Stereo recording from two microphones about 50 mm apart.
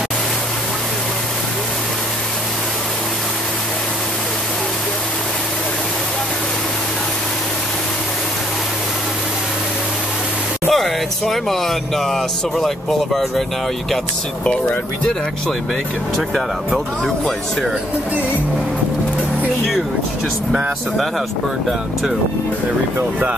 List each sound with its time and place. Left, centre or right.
10.7 s a sound: centre
12.1 s speech: centre
14.4 s speech: left
16.3 s speech: centre